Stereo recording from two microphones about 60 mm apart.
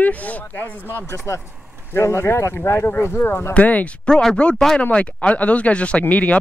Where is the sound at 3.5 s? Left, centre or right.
Left.